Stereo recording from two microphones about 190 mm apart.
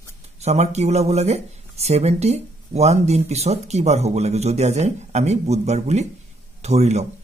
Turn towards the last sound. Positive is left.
turn(degrees=-35)  # may be behind; listen again after turning